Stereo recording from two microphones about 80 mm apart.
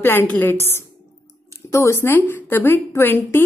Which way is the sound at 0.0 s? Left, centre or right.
Left.